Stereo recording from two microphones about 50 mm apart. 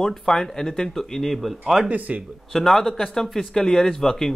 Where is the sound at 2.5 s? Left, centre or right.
Centre.